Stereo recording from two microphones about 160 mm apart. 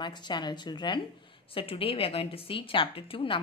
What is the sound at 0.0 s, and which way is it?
A woman's voice, 30° left (ahead or behind).